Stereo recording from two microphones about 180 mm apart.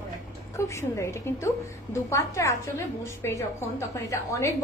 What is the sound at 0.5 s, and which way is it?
A woman's voice, 15° left (ahead or behind).